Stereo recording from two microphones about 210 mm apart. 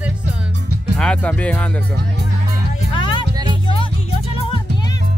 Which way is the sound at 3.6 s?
25° left (ahead or behind).